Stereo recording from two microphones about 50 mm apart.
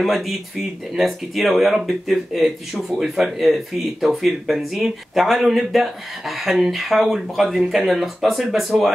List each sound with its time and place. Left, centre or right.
0.0 s speech: centre